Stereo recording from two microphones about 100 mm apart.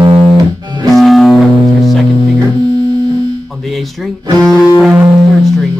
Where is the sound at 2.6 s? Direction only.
40° right (ahead or behind).